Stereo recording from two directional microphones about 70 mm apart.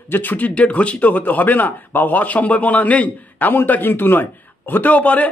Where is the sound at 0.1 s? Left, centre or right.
Left.